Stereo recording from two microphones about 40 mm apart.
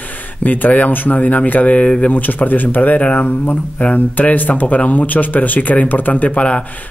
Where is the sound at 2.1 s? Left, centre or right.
Left.